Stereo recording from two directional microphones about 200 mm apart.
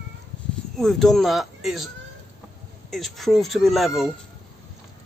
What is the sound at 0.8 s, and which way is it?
Speech, centre (ahead or behind).